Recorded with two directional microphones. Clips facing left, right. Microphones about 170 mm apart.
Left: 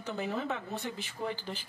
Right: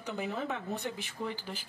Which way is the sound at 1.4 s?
10° right (ahead or behind).